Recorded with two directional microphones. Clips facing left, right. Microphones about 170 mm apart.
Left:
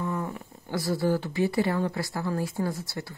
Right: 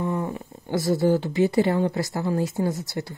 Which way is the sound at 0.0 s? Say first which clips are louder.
Right 4 dB; 20° right (ahead or behind).